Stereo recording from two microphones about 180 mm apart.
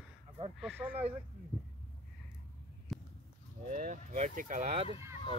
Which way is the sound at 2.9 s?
Centre (ahead or behind).